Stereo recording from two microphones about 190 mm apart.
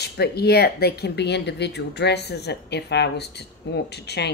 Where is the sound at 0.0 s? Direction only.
60° left (ahead or behind).